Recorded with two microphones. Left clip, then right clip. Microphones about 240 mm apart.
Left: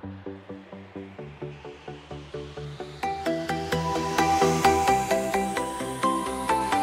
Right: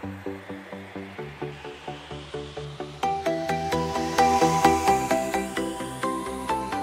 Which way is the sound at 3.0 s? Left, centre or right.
Centre.